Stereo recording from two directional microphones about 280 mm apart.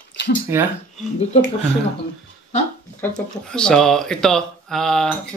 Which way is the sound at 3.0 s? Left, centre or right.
Centre.